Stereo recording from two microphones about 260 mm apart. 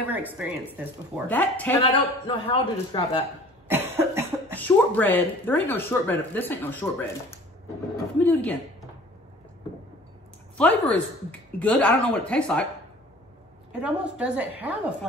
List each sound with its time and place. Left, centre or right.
0.1 s speech: centre
1.2 s speech: centre
1.8 s a man's voice: centre
3.6 s cough: centre
4.6 s speech: centre
10.6 s speech: centre
13.7 s speech: centre